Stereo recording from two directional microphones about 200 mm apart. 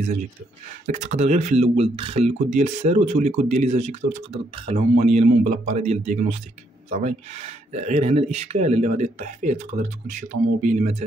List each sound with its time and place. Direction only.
0.8 s speech: 35° right (ahead or behind)